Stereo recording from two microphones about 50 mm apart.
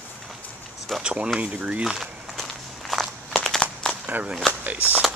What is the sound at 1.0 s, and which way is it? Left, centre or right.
Speech, centre.